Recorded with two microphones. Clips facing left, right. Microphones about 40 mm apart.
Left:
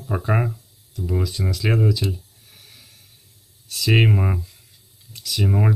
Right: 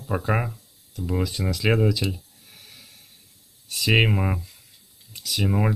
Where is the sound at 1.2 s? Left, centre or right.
Right.